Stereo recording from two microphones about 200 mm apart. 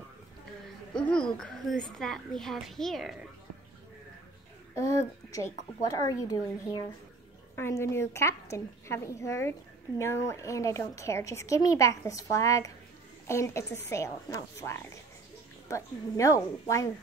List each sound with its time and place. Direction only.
0.9 s a woman's voice: 5° left (ahead or behind)
4.7 s a woman's voice: 15° left (ahead or behind)